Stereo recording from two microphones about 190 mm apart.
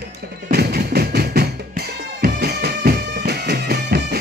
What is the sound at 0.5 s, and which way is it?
Drum, 55° right (ahead or behind).